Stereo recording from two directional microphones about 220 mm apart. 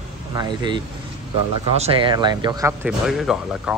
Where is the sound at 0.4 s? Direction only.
20° right (ahead or behind).